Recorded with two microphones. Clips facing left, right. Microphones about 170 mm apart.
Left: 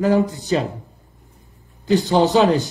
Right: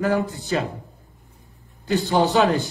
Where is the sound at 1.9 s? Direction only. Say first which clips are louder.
Left 4 dB; 20° left (ahead or behind).